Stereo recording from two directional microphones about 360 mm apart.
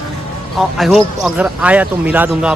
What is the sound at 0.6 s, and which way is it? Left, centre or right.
Speech, centre.